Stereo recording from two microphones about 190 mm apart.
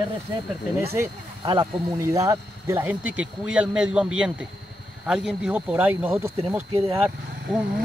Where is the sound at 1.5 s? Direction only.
20° right (ahead or behind).